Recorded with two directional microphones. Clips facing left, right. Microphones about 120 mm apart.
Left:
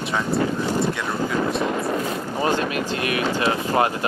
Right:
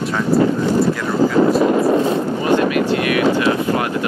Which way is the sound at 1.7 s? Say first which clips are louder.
Right 9 dB; 70° right (ahead or behind).